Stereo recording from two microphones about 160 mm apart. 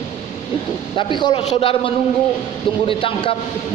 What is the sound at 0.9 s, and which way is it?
A man's voice, 30° left (ahead or behind).